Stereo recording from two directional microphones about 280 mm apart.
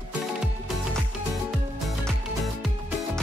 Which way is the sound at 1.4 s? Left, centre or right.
Centre.